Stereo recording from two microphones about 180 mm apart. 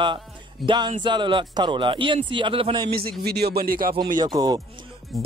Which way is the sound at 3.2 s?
65° right (ahead or behind).